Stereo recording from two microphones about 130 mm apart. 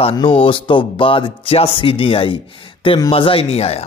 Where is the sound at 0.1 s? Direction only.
40° left (ahead or behind).